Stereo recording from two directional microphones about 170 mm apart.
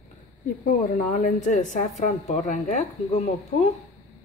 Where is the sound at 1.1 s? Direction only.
50° left (ahead or behind).